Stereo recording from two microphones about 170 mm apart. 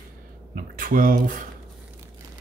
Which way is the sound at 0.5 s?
55° right (ahead or behind).